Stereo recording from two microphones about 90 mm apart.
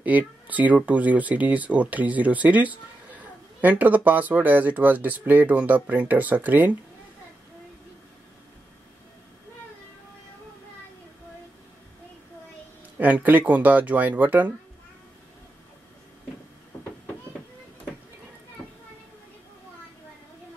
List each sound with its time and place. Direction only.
0.0 s speech: 20° right (ahead or behind)
12.9 s speech: 20° right (ahead or behind)